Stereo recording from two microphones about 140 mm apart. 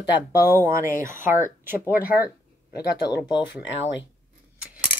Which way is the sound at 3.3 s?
10° right (ahead or behind).